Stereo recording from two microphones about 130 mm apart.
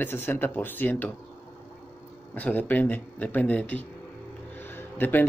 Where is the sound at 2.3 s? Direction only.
15° left (ahead or behind).